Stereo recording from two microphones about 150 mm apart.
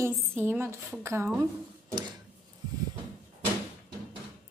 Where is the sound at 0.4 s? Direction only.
15° right (ahead or behind).